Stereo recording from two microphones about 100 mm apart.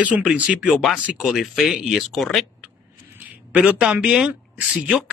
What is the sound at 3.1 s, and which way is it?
Speech, 15° right (ahead or behind).